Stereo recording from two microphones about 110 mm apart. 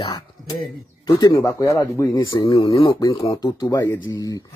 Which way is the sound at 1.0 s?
30° left (ahead or behind).